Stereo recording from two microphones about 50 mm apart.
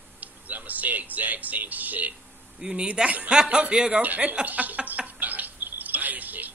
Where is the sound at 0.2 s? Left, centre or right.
Right.